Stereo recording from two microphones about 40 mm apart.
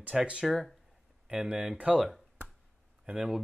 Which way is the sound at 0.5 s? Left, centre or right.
Centre.